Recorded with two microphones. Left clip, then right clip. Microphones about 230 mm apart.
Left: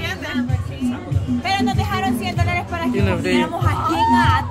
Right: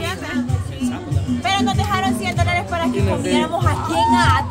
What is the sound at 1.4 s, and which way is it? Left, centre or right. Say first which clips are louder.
Music: right 2 dB; centre.